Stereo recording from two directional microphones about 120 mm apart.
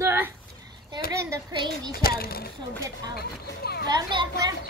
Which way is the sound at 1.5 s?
40° right (ahead or behind).